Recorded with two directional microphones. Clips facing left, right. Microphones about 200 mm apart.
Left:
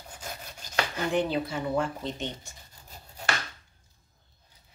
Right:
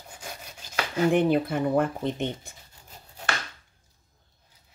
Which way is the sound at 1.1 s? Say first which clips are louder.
Right 5 dB; 55° right (ahead or behind).